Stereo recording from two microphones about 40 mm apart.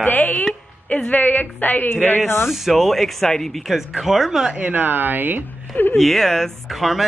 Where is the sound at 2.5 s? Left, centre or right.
Centre.